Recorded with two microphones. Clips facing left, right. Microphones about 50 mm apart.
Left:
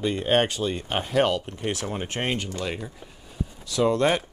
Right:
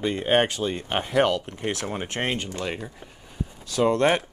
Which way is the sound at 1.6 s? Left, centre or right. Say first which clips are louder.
Right 1 dB; right.